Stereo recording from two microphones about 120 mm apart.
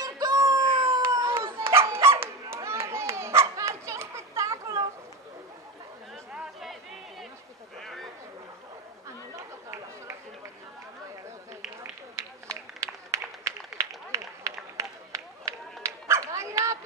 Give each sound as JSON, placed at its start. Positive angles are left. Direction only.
{"t": 0.0, "sound": "wail", "side_deg": -30}
{"t": 1.2, "sound": "children playing", "side_deg": -45}
{"t": 1.5, "sound": "dog", "side_deg": -20}
{"t": 6.3, "sound": "chatter", "side_deg": 0}
{"t": 7.8, "sound": "a sound", "side_deg": 0}
{"t": 11.8, "sound": "run", "side_deg": -20}